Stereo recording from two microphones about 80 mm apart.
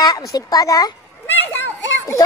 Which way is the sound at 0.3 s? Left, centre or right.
Left.